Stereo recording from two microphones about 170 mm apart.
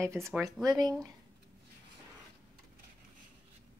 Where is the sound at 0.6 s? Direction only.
25° right (ahead or behind).